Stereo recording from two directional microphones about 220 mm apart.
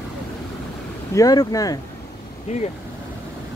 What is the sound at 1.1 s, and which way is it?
Speech, 15° left (ahead or behind).